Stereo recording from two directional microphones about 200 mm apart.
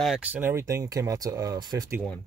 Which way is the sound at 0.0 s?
5° right (ahead or behind).